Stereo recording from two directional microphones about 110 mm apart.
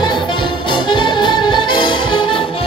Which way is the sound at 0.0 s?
45° left (ahead or behind).